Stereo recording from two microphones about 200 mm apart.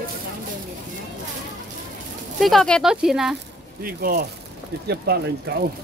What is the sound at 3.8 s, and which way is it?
Speech, 50° right (ahead or behind).